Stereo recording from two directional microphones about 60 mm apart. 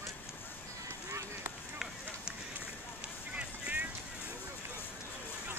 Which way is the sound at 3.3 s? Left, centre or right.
Centre.